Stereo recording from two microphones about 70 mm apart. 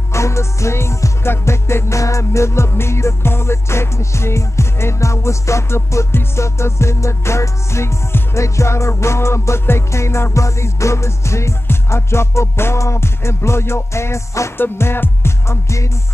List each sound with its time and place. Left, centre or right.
0.1 s music: left
14.6 s music: left